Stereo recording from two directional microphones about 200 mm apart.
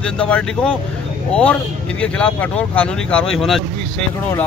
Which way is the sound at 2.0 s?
5° left (ahead or behind).